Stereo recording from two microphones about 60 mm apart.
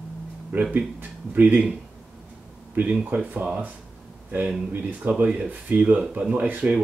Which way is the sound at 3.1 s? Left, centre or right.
Centre.